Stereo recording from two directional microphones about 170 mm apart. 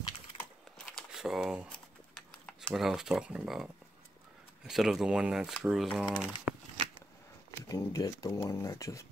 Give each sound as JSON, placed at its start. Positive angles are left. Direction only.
{"t": 0.8, "sound": "a sound", "side_deg": 0}
{"t": 4.6, "sound": "speech", "side_deg": 0}
{"t": 7.6, "sound": "speech", "side_deg": 20}